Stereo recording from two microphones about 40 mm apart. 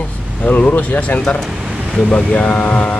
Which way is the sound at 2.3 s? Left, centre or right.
Left.